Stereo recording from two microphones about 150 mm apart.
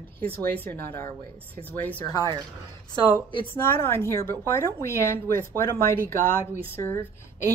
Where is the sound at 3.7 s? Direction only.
15° left (ahead or behind).